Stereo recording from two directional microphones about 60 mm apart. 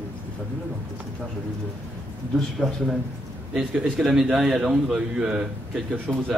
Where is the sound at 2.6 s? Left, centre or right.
Centre.